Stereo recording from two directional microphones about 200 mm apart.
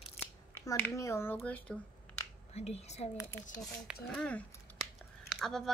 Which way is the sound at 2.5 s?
30° left (ahead or behind).